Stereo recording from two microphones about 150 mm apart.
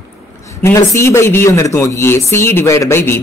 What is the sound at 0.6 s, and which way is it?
A man's voice, 20° left (ahead or behind).